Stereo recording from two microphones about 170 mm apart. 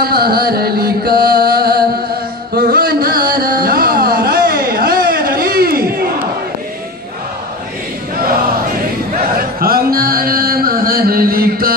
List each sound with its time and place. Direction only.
0.0 s music: 65° right (ahead or behind)
2.5 s carnatic music: 60° right (ahead or behind)
9.4 s music: 60° right (ahead or behind)